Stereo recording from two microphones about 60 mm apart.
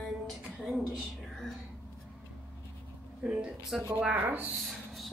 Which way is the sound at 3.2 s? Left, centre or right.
Centre.